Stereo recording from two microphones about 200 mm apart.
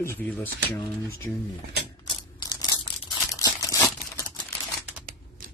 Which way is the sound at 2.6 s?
20° left (ahead or behind).